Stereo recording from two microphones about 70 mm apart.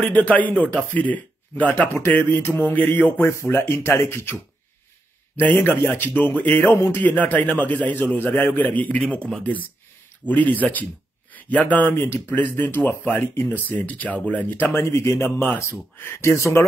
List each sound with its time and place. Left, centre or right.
0.1 s speech: left
3.2 s speech: left
5.4 s speech: left
7.0 s speech: left
11.9 s speech: left
14.5 s speech: left